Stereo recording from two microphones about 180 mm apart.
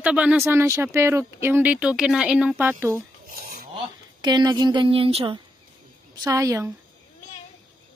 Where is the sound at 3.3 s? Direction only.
55° right (ahead or behind).